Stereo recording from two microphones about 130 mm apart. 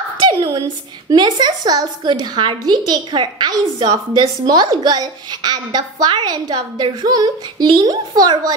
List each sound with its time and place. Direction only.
0.3 s a woman's voice: 30° right (ahead or behind)